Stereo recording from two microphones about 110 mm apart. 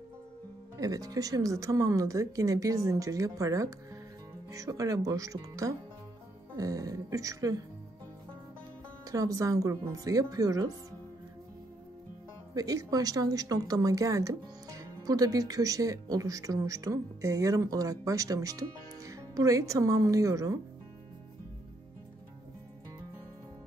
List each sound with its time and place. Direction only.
0.7 s speech: 30° right (ahead or behind)
9.1 s speech: 30° right (ahead or behind)
12.5 s speech: 35° right (ahead or behind)